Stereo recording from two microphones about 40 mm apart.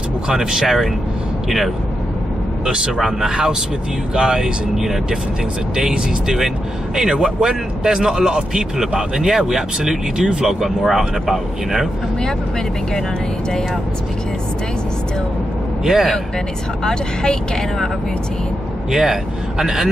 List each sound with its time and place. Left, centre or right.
0.3 s speech: centre
2.6 s speech: centre
15.8 s a man's voice: centre
16.8 s speech: centre
18.9 s speech: centre